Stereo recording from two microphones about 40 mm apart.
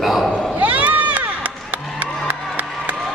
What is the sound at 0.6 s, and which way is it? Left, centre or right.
Crowd, right.